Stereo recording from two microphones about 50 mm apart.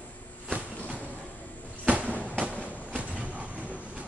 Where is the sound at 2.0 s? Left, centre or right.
Left.